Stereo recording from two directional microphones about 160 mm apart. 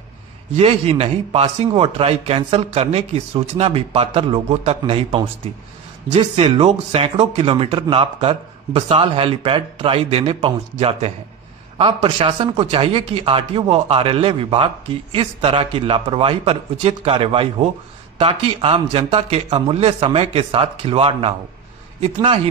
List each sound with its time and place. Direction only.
0.6 s speech: 40° right (ahead or behind)